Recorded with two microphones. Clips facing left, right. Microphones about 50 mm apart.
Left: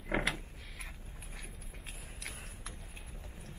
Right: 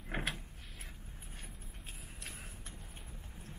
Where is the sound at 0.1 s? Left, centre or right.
Left.